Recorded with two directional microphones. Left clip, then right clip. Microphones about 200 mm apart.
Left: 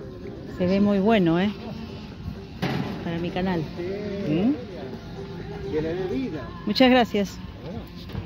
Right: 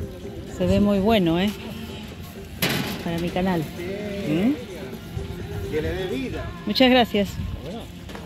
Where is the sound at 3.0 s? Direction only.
20° right (ahead or behind).